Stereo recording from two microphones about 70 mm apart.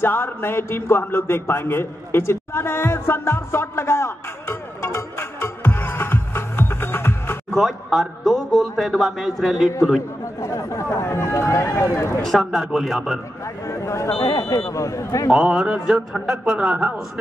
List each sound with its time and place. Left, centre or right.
0.0 s a man's voice: left
7.5 s a man's voice: centre
10.4 s speech: left
12.4 s a man's voice: centre
13.7 s speech: left
14.1 s speech: left
14.7 s speech: left
15.3 s speech: centre